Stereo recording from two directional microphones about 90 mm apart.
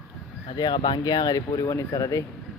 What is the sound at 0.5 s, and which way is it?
Speech, 55° left (ahead or behind).